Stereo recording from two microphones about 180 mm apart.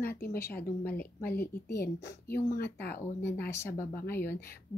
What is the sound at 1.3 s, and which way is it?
Speech, 60° left (ahead or behind).